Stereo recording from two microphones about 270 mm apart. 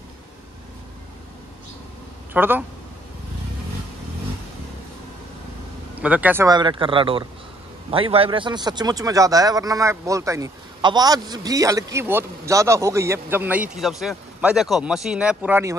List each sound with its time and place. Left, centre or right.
2.3 s speech: centre
5.9 s speech: centre